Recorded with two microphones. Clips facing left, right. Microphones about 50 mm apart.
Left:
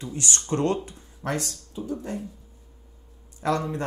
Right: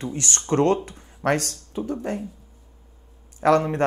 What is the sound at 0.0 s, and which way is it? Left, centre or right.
Speech, right.